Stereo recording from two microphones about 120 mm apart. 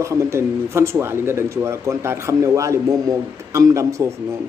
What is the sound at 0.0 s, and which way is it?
A man's voice, 25° right (ahead or behind).